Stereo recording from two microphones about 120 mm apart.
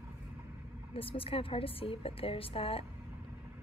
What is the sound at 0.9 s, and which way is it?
A woman's voice, 50° left (ahead or behind).